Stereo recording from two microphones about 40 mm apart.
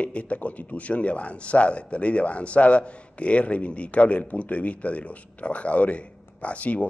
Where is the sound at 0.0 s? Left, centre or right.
Left.